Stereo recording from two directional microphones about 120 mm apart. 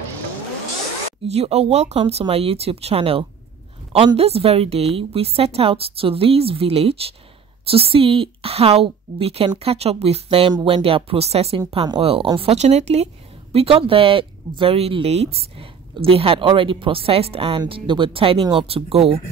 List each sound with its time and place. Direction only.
1.2 s a woman's voice: 60° right (ahead or behind)